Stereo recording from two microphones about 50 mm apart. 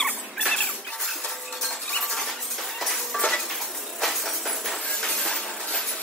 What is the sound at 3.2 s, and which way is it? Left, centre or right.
Cutlery, centre.